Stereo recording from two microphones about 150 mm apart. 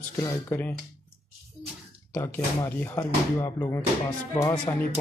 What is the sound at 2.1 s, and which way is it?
Speech, 15° left (ahead or behind).